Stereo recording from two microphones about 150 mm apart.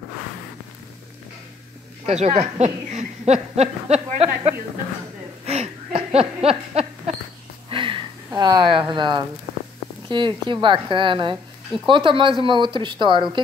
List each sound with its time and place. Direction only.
2.0 s speech: 50° right (ahead or behind)
5.4 s a sound: 40° right (ahead or behind)
8.4 s speech: 30° right (ahead or behind)